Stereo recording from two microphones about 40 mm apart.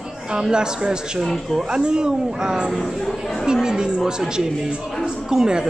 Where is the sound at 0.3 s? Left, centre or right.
Right.